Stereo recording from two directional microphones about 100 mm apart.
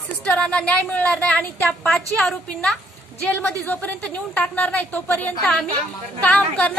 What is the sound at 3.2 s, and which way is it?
Speech, 15° left (ahead or behind).